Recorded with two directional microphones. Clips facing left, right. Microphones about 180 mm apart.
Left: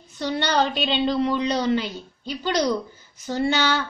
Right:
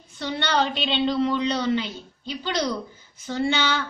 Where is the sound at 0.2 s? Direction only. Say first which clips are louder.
Left 2 dB; 40° left (ahead or behind).